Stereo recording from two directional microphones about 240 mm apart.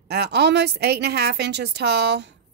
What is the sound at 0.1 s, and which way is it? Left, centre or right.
Speech, right.